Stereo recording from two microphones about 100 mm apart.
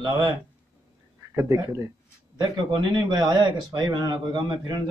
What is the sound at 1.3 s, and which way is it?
Speech, 35° right (ahead or behind).